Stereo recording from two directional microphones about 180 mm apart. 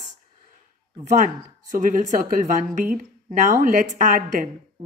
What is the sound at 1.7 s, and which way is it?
Speech, 45° right (ahead or behind).